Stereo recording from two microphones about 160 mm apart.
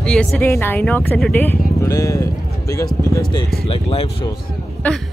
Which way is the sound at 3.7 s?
35° left (ahead or behind).